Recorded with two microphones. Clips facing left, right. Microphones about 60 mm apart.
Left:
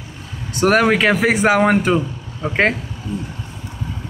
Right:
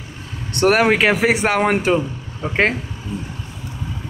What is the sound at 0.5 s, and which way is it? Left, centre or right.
Speech, centre.